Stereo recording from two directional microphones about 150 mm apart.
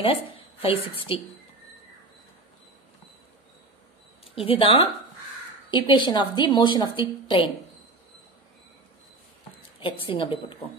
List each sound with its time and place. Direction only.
0.0 s a woman's voice: 40° left (ahead or behind)
4.4 s a woman's voice: 40° left (ahead or behind)
9.8 s a woman's voice: 35° left (ahead or behind)